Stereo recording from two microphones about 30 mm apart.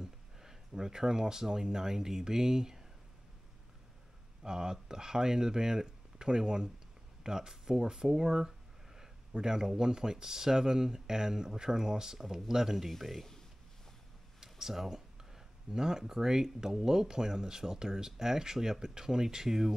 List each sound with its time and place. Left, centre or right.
0.0 s speech: centre
4.4 s speech: right
8.5 s a sound: centre
9.3 s speech: right; by 13.2 s centre
13.2 s a sound: centre
14.4 s speech: centre